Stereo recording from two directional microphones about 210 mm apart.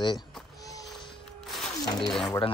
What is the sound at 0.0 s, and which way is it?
Speech, 20° left (ahead or behind).